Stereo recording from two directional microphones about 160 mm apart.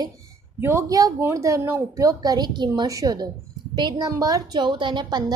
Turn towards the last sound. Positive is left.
turn(degrees=-25)  # may be behind; listen again after turning